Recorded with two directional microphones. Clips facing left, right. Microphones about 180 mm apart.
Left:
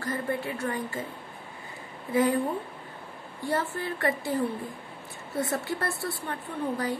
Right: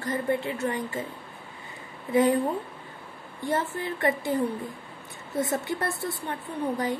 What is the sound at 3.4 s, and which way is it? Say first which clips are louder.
Speech: right 1 dB; 20° right (ahead or behind).